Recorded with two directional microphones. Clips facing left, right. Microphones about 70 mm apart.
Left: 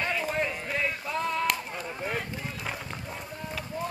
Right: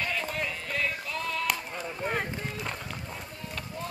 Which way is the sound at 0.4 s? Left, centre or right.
Left.